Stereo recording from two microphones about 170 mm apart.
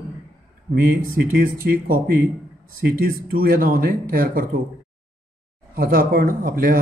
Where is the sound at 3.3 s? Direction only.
60° right (ahead or behind).